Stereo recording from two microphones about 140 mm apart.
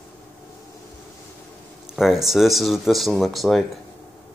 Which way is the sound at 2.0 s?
Centre (ahead or behind).